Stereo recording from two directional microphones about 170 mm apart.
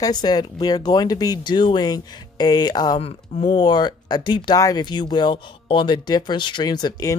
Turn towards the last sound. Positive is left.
turn(degrees=25)  # may be behind; listen again after turning